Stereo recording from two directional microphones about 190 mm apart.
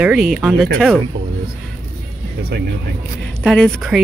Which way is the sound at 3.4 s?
5° left (ahead or behind).